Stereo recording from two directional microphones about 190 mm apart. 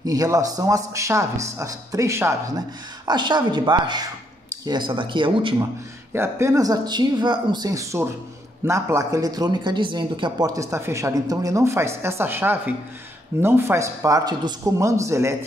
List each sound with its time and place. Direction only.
0.0 s speech: 20° right (ahead or behind)
6.1 s speech: 15° right (ahead or behind)